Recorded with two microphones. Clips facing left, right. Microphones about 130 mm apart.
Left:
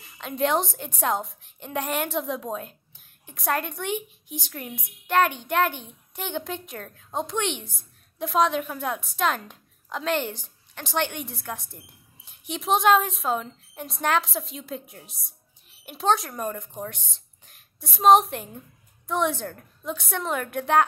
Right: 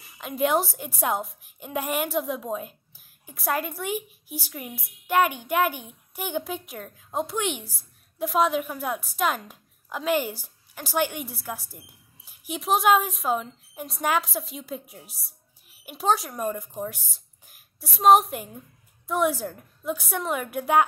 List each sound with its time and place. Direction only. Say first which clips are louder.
0.2 s a woman's voice: right 1 dB; 5° right (ahead or behind)